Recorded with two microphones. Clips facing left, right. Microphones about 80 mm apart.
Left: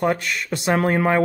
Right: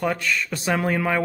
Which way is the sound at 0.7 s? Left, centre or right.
Left.